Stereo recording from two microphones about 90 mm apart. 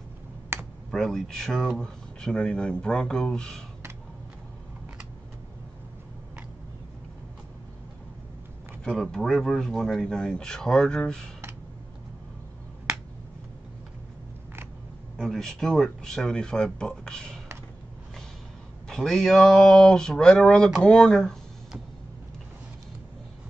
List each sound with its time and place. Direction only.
0.5 s computer keyboard: 25° right (ahead or behind)
0.9 s speech: 5° left (ahead or behind)
8.8 s speech: 5° left (ahead or behind)
15.1 s speech: 5° left (ahead or behind)
18.9 s speech: 5° left (ahead or behind)